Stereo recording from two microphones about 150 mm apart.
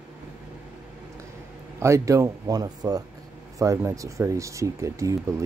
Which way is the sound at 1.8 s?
20° right (ahead or behind).